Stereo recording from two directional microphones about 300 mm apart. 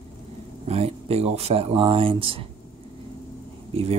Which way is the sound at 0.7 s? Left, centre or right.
Centre.